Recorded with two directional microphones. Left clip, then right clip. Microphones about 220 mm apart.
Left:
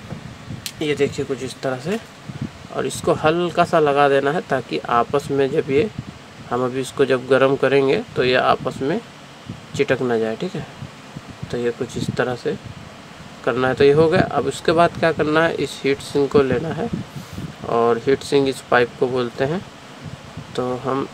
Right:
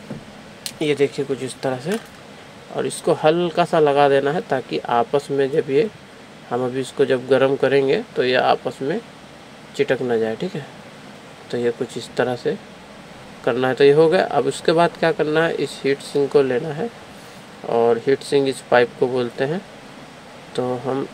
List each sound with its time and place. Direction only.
0.7 s speech: centre (ahead or behind)